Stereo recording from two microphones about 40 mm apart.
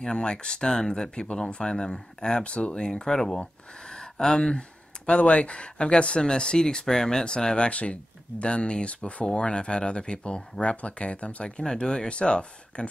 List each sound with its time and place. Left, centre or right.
0.0 s speech: left